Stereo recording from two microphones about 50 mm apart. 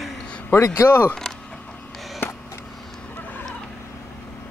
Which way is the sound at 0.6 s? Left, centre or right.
Left.